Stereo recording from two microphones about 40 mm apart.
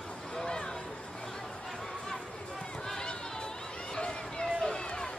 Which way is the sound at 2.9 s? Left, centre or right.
Centre.